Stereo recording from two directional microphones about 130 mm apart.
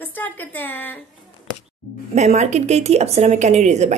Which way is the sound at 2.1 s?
60° right (ahead or behind).